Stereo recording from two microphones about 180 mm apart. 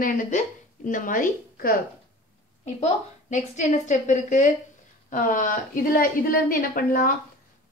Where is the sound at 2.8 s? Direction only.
40° left (ahead or behind).